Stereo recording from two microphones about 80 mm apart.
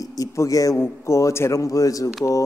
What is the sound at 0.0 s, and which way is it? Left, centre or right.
A man's voice, left.